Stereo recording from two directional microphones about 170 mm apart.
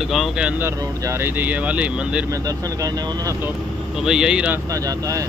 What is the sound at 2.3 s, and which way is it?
Speech, 20° right (ahead or behind).